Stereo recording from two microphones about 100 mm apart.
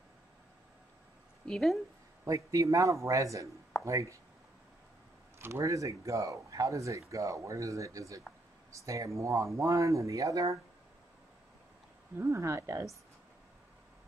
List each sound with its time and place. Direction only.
1.4 s speech: 5° left (ahead or behind)
2.2 s speech: 35° right (ahead or behind)
5.4 s speech: 30° right (ahead or behind)
12.2 s speech: 30° right (ahead or behind)